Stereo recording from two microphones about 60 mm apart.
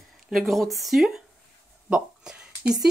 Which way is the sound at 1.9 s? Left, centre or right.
Centre.